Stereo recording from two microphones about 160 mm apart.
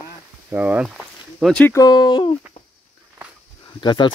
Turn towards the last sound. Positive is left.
turn(degrees=30)  # may be behind; listen again after turning